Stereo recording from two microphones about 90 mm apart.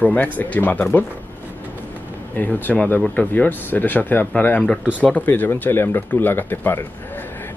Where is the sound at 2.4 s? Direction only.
20° left (ahead or behind).